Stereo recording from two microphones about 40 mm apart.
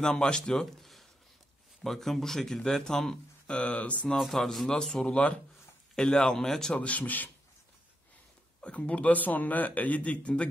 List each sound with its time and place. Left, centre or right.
0.0 s speech: centre
3.4 s a man's voice: left
4.2 s speech: centre
4.6 s speech: centre
5.0 s speech: left
5.9 s speech: centre
6.7 s a man's voice: left
8.5 s a man's voice: left